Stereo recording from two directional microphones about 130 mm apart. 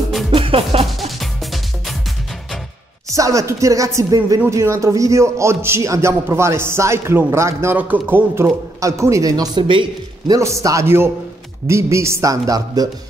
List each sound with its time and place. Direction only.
0.3 s music: 45° right (ahead or behind)
0.9 s music: centre (ahead or behind)
3.1 s a man's voice: 25° right (ahead or behind)
10.3 s a man's voice: 25° right (ahead or behind)